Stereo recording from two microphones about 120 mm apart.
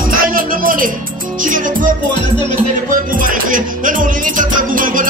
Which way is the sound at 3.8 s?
90° right.